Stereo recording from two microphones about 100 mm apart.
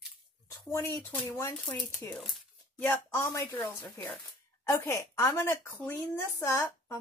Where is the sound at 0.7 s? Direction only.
25° left (ahead or behind).